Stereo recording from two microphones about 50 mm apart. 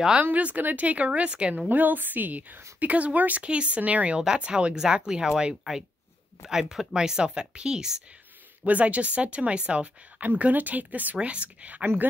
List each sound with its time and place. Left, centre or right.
0.2 s a woman's voice: right
1.7 s a woman's voice: right; by 8.0 s centre
8.6 s a woman's voice: right
10.2 s a woman's voice: right
11.8 s speech: right